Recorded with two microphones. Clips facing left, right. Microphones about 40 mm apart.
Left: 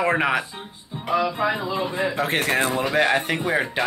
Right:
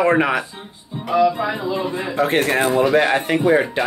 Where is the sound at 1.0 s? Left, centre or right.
Centre.